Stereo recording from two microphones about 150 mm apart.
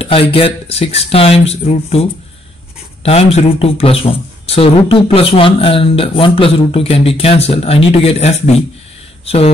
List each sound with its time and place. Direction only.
0.0 s speech: 40° left (ahead or behind)